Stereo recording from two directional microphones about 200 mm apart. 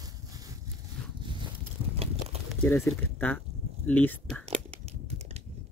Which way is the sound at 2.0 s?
30° right (ahead or behind).